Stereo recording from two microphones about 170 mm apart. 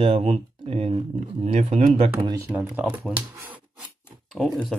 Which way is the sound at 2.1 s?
25° right (ahead or behind).